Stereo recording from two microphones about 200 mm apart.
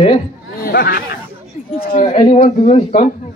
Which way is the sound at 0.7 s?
50° left (ahead or behind).